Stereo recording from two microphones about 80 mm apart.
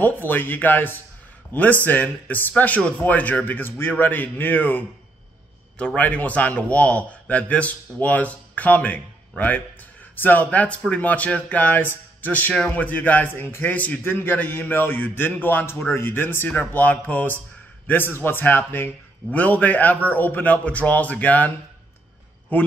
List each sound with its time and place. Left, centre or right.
0.0 s a man's voice: left
10.2 s speech: centre